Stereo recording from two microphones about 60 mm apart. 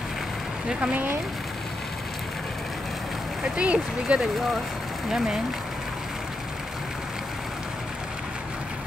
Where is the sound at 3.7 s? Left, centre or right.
Centre.